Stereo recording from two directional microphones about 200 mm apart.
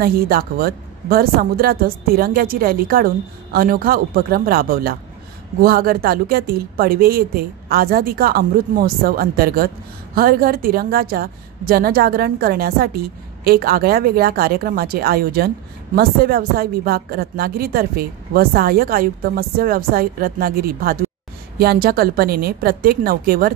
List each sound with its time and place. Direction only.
0.0 s a woman's voice: 45° right (ahead or behind)